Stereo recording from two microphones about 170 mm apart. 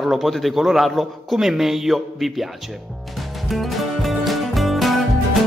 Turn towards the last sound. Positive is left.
turn(degrees=0)  # may be behind; listen again after turning